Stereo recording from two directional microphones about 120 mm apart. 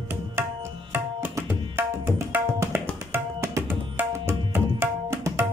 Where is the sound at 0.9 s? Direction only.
20° right (ahead or behind).